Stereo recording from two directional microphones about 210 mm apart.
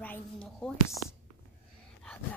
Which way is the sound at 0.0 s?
5° left (ahead or behind).